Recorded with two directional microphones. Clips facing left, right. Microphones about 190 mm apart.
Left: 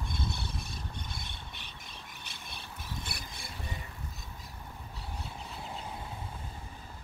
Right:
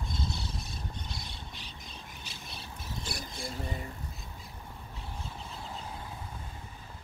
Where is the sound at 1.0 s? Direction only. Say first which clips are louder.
Right 1 dB; 55° left (ahead or behind).